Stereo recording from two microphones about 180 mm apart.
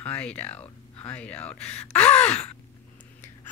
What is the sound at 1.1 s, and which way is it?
Speech, 10° left (ahead or behind).